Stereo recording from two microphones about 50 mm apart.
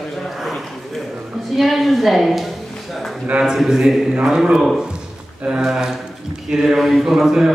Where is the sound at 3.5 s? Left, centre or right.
Centre.